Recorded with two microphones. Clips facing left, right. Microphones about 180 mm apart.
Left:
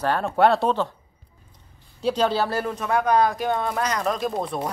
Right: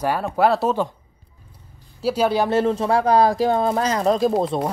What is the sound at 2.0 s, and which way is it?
Speech, 5° right (ahead or behind).